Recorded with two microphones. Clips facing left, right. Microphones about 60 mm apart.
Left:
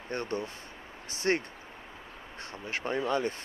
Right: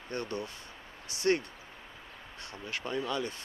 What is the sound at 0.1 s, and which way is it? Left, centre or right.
Speech, left.